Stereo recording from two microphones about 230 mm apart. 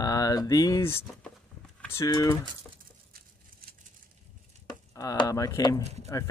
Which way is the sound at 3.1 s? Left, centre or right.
Right.